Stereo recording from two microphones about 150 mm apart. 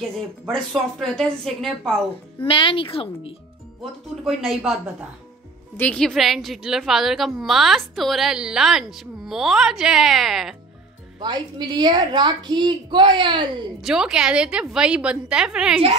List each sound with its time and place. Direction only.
0.5 s a woman's voice: 5° left (ahead or behind)
2.4 s a woman's voice: 35° left (ahead or behind)
4.2 s a woman's voice: centre (ahead or behind)
5.8 s a woman's voice: 5° left (ahead or behind)
11.1 s a woman's voice: 30° right (ahead or behind)
13.7 s a woman's voice: 5° right (ahead or behind)